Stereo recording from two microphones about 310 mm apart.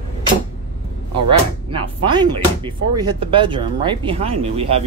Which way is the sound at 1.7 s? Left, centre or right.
Centre.